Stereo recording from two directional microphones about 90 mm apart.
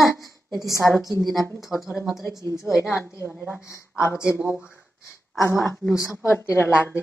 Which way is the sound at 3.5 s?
25° left (ahead or behind).